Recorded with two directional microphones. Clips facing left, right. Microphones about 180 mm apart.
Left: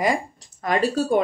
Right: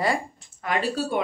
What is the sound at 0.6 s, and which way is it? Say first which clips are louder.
Speech: left 5 dB; 40° left (ahead or behind).